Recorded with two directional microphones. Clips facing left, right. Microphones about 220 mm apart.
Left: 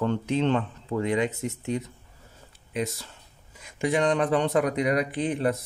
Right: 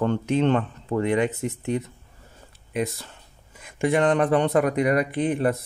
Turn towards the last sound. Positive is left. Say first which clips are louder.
# right 3 dB
turn(degrees=-55)  # may be behind; listen again after turning